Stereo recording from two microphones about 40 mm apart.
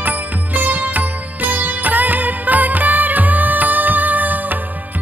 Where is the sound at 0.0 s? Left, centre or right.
Right.